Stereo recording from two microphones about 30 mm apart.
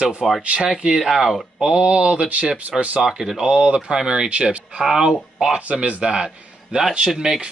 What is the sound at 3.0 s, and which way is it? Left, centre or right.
Speech, centre.